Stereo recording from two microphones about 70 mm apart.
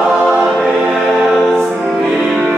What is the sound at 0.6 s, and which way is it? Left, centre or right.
Choir, centre.